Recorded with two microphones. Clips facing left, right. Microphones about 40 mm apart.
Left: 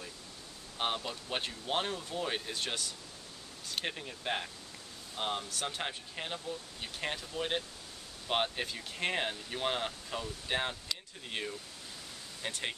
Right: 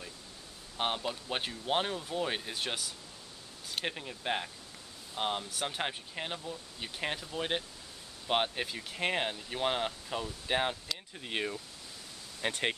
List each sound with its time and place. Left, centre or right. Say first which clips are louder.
0.7 s speech: right 2 dB; centre; by 12.7 s right